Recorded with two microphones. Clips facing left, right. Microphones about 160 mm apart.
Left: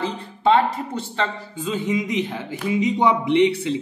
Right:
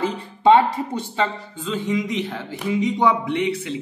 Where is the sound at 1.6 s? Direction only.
15° left (ahead or behind).